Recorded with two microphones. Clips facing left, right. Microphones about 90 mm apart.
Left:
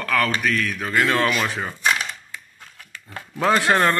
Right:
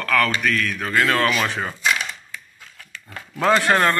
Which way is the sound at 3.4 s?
20° left (ahead or behind).